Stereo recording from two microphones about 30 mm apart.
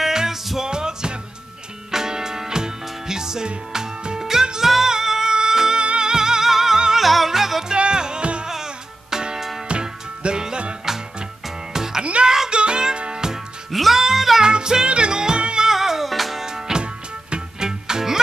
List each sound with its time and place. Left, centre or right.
0.0 s music: centre
5.8 s music: right; by 6.8 s centre
7.0 s yodeling: centre
7.6 s music: right
8.5 s music: centre
9.7 s music: right
11.7 s music: centre
12.0 s music: right
13.7 s music: centre
13.9 s music: centre
14.4 s music: right
15.7 s music: centre
16.4 s music: centre